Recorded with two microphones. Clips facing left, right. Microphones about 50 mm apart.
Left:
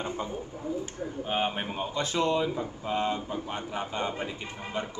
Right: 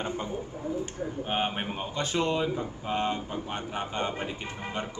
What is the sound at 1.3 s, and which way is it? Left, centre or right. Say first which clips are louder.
A man's voice: left 1 dB; centre.